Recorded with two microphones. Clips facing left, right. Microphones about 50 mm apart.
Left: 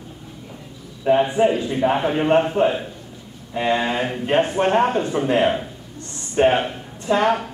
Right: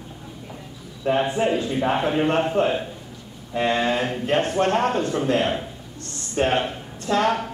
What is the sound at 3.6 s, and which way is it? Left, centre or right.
A man's voice, centre.